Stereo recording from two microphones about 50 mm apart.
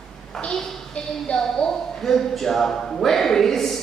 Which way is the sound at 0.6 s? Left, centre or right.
Centre.